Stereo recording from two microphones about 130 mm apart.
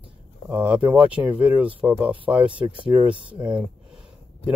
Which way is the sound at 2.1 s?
40° right (ahead or behind).